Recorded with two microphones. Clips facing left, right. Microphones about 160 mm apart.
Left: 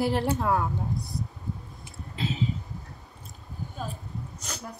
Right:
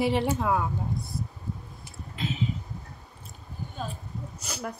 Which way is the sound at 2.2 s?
35° left (ahead or behind).